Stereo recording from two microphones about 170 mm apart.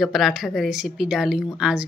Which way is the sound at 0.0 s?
Centre (ahead or behind).